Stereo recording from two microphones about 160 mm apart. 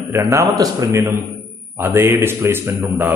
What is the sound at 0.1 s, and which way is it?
A man's voice, 20° right (ahead or behind).